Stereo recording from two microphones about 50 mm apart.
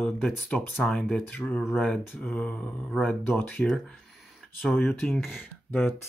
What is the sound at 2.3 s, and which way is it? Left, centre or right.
Mantra, centre.